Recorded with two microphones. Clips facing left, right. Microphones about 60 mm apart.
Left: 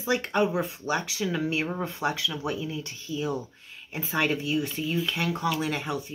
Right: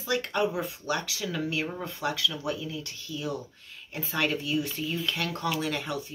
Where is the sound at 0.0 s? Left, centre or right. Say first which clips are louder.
Left 3 dB; left.